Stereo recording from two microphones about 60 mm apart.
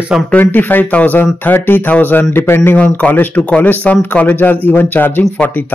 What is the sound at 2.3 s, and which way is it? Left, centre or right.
Speech, left.